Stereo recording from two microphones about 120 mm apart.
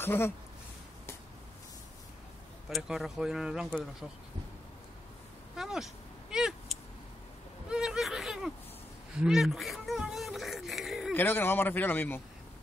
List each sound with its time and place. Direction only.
0.0 s speech: 20° left (ahead or behind)
2.7 s speech: centre (ahead or behind)
5.6 s speech: 5° right (ahead or behind)
6.3 s a sound: 5° right (ahead or behind)
11.1 s speech: 15° left (ahead or behind)